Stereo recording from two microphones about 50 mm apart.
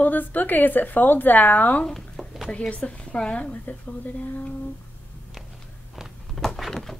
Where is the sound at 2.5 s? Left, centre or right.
Left.